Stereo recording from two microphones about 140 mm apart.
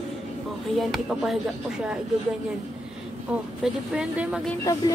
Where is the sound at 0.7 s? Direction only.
Centre (ahead or behind).